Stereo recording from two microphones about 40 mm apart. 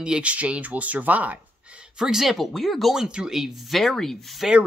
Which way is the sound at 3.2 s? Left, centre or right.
Centre.